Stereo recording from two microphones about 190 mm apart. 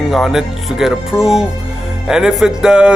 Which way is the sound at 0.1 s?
Centre (ahead or behind).